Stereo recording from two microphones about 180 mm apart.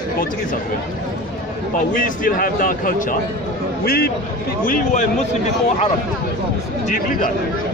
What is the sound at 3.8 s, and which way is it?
Speech, 60° left (ahead or behind).